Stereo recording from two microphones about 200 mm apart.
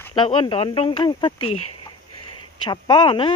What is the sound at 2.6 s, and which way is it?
Speech, 25° left (ahead or behind).